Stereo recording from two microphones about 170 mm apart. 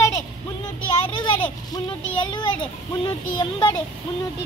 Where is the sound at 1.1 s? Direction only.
30° left (ahead or behind).